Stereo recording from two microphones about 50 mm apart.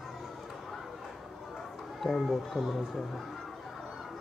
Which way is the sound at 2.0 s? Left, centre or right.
Centre.